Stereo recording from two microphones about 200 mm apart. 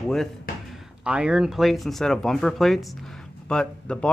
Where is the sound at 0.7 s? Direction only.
5° right (ahead or behind).